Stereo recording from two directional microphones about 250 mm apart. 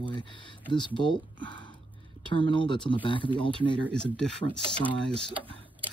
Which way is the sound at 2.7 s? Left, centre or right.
Centre.